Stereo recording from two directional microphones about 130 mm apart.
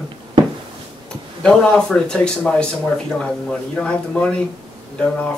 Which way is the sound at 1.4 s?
5° left (ahead or behind).